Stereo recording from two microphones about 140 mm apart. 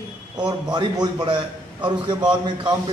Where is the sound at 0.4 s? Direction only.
30° right (ahead or behind).